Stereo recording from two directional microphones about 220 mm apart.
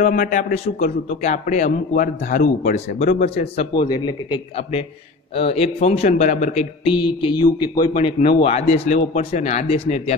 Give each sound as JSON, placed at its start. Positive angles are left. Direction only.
{"t": 0.0, "sound": "a man's voice", "side_deg": 40}